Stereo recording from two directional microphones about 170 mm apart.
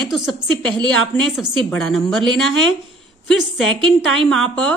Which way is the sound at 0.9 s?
5° left (ahead or behind).